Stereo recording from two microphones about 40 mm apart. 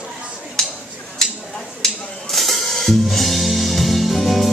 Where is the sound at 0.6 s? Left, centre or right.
Centre.